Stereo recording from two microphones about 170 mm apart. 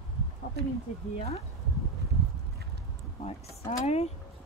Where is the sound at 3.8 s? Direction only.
40° left (ahead or behind).